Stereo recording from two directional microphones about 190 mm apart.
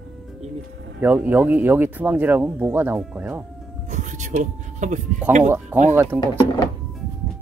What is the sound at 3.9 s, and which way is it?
Speech, 40° right (ahead or behind).